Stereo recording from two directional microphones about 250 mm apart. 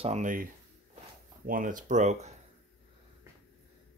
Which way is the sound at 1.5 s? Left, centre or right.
Right.